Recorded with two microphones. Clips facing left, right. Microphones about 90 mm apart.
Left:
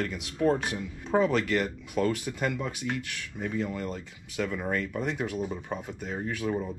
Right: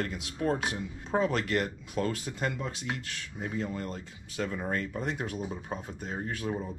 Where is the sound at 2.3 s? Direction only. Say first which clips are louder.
Left 3 dB; 20° right (ahead or behind).